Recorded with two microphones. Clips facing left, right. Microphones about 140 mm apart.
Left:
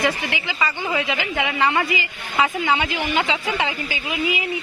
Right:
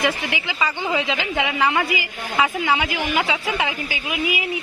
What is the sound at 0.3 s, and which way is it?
A woman's voice, 15° right (ahead or behind).